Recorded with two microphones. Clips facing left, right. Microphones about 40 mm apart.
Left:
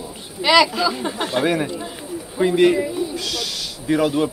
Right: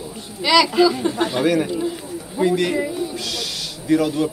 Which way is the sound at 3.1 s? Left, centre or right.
Centre.